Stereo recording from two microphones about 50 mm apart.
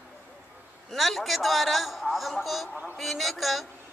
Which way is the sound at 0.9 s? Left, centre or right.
Centre.